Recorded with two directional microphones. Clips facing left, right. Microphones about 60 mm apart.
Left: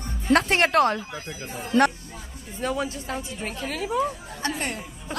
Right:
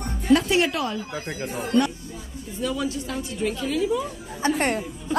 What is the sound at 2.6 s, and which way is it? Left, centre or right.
A woman's voice, left.